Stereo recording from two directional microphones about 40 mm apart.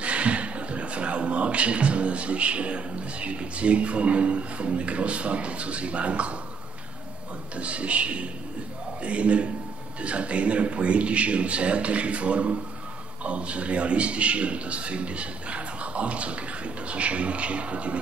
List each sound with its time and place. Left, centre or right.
0.0 s speech: right
7.5 s speech: right